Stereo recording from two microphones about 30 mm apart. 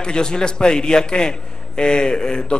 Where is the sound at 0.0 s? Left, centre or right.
Left.